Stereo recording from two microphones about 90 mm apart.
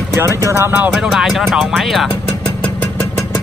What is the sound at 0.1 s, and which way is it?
Speech, 35° right (ahead or behind).